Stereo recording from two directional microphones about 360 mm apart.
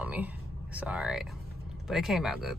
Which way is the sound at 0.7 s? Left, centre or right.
Centre.